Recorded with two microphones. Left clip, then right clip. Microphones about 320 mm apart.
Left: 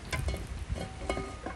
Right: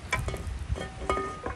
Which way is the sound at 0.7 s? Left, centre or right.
Centre.